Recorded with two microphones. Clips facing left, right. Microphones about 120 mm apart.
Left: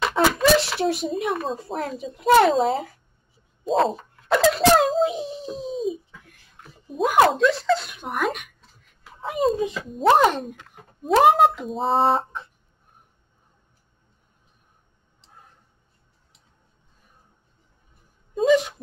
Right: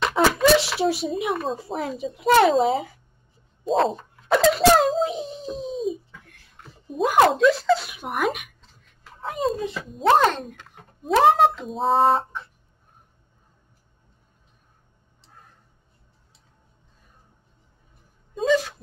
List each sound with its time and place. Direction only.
0.0 s a child's voice: centre (ahead or behind)
8.5 s a sound: 10° left (ahead or behind)
9.6 s speech: 15° left (ahead or behind)
9.8 s speech: centre (ahead or behind)
10.1 s speech: 15° left (ahead or behind)
10.4 s speech: 5° left (ahead or behind)
18.5 s wail: 15° left (ahead or behind)